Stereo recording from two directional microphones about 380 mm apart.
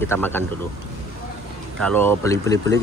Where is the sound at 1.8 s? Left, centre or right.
Centre.